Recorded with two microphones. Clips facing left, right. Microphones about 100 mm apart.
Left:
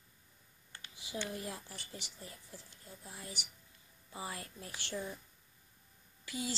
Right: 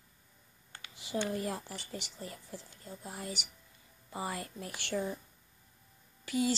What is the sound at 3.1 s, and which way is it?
Speech, 60° right (ahead or behind).